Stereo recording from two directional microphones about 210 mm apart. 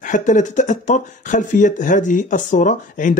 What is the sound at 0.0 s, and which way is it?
A man's voice, 35° left (ahead or behind).